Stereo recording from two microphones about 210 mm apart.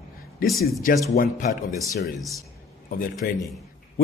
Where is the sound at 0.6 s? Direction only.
40° left (ahead or behind).